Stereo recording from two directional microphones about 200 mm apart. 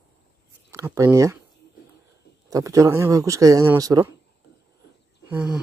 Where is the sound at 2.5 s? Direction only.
15° right (ahead or behind).